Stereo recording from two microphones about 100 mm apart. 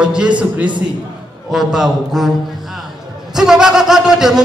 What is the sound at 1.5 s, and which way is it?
Speech, 5° right (ahead or behind).